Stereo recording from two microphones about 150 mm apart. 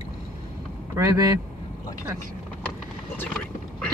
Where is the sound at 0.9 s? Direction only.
20° right (ahead or behind).